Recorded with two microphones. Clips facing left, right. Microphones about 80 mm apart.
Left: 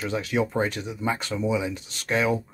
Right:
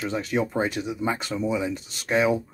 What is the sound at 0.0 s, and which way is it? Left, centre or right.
Speech, centre.